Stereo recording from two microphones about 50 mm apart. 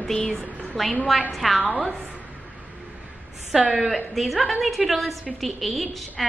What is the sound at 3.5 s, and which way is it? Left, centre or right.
Speech, centre.